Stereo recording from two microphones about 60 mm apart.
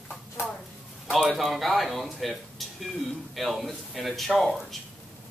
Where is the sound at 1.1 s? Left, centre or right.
Centre.